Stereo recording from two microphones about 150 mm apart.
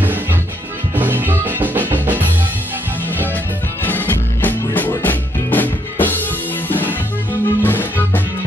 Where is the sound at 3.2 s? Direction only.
10° left (ahead or behind).